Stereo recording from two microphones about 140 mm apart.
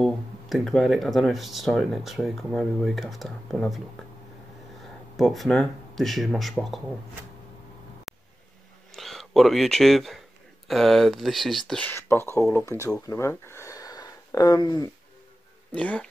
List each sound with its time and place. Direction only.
0.0 s speech: centre (ahead or behind)
5.1 s speech: centre (ahead or behind)
8.1 s a sound: 5° right (ahead or behind)
8.9 s speech: centre (ahead or behind)
11.9 s speech: 20° left (ahead or behind)
15.7 s speech: 10° left (ahead or behind)